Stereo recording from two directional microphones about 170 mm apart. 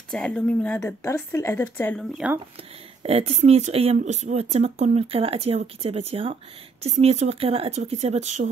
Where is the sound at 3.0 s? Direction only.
35° right (ahead or behind).